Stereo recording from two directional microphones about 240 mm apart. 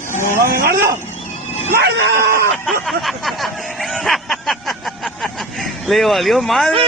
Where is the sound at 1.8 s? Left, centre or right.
Right.